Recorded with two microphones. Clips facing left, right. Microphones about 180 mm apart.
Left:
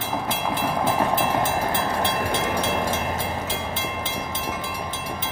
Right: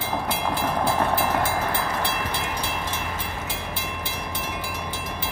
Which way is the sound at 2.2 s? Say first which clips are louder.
Left 5 dB; 50° left (ahead or behind).